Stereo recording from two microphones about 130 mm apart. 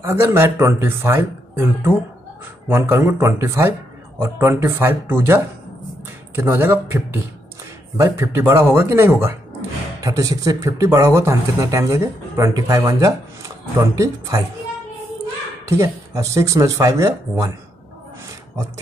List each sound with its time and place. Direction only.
0.0 s speech: 20° right (ahead or behind)
8.0 s speech: 25° right (ahead or behind)
15.7 s speech: 25° right (ahead or behind)